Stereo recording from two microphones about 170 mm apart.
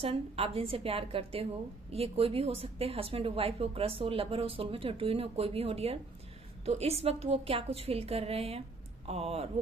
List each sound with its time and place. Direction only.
0.0 s a woman's voice: 35° right (ahead or behind)